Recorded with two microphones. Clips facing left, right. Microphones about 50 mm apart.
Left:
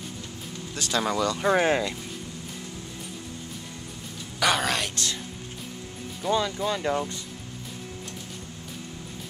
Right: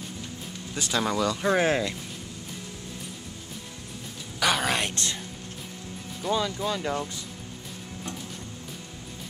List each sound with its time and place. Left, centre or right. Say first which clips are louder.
0.7 s speech: even; centre
4.4 s a sound: left 1 dB; centre
4.7 s speech: right 1 dB; right
6.2 s speech: left 2 dB; centre